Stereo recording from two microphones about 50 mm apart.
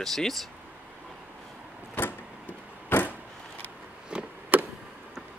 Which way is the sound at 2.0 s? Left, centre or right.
Left.